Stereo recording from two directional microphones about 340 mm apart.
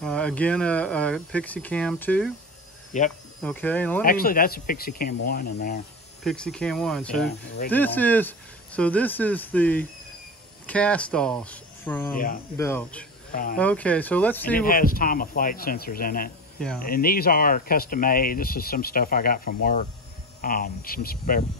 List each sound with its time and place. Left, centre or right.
0.0 s speech: centre
2.9 s speech: left
3.4 s speech: centre
4.0 s speech: left
6.2 s speech: centre
7.2 s speech: left
7.7 s speech: centre
13.3 s speech: left
13.6 s speech: centre
14.6 s speech: left
16.5 s cricket: centre
16.8 s speech: left